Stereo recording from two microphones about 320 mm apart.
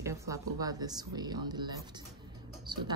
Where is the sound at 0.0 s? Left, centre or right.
Centre.